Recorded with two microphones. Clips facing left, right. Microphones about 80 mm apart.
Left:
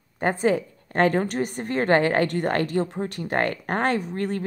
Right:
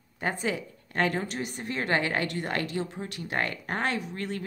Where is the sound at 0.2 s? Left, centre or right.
Left.